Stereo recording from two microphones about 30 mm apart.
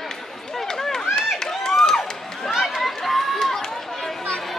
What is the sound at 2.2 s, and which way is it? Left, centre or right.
Run, centre.